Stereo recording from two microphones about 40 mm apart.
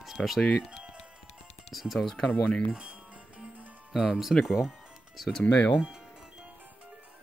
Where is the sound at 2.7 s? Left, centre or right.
Right.